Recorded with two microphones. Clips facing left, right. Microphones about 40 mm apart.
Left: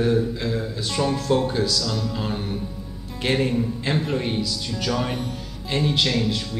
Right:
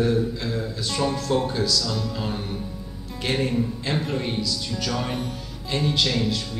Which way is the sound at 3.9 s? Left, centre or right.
Centre.